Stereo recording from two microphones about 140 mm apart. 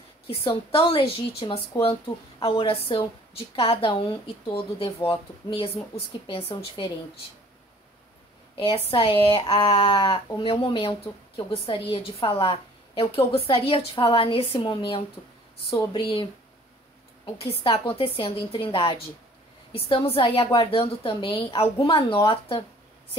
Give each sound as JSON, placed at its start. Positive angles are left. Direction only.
{"t": 0.3, "sound": "a woman's voice", "side_deg": 40}
{"t": 5.9, "sound": "a woman's voice", "side_deg": 40}
{"t": 8.5, "sound": "a woman's voice", "side_deg": 40}
{"t": 17.4, "sound": "a woman's voice", "side_deg": 40}